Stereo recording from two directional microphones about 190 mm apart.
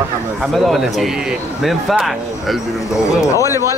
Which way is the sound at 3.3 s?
15° left (ahead or behind).